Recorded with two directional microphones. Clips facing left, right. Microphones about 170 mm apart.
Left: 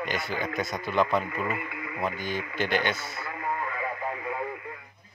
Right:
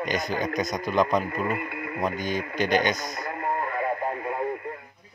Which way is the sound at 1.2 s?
40° right (ahead or behind).